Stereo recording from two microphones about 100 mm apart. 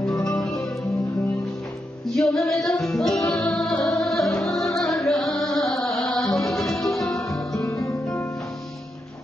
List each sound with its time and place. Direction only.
0.0 s music: 5° left (ahead or behind)
2.0 s music: centre (ahead or behind)
7.5 s guitar: 30° left (ahead or behind)